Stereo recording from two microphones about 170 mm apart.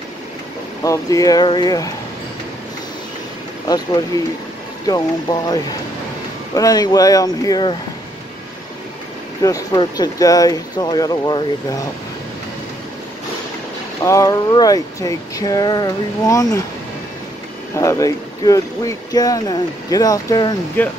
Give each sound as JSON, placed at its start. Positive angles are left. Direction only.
{"t": 0.8, "sound": "speech", "side_deg": 20}
{"t": 3.6, "sound": "speech", "side_deg": 25}
{"t": 9.4, "sound": "speech", "side_deg": 20}
{"t": 14.0, "sound": "speech", "side_deg": 20}
{"t": 17.7, "sound": "speech", "side_deg": 20}
{"t": 20.8, "sound": "speech", "side_deg": 10}